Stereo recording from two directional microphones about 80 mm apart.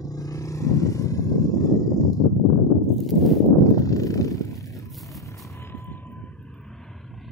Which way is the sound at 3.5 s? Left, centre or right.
Left.